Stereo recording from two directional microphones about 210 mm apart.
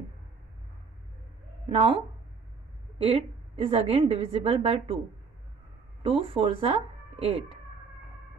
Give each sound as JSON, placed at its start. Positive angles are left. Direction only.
{"t": 1.7, "sound": "a woman's voice", "side_deg": -25}
{"t": 3.0, "sound": "a woman's voice", "side_deg": -25}
{"t": 6.0, "sound": "speech", "side_deg": -25}